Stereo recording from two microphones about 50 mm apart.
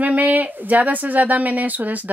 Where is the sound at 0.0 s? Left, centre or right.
Right.